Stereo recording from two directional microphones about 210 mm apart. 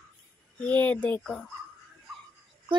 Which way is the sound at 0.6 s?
5° left (ahead or behind).